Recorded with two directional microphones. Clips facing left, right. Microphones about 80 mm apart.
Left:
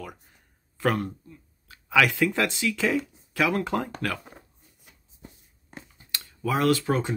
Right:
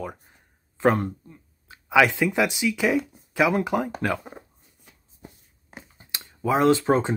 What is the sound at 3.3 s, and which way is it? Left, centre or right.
Speech, centre.